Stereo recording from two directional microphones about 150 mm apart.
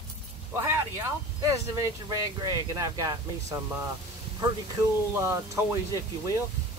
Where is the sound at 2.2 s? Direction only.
25° right (ahead or behind).